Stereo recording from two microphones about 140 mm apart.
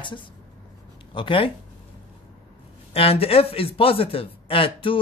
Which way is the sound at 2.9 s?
45° left (ahead or behind).